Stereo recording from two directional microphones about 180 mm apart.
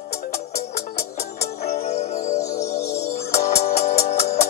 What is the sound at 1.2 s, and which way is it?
Music, 35° left (ahead or behind).